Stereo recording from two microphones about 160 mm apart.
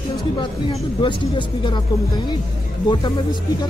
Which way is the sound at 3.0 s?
30° left (ahead or behind).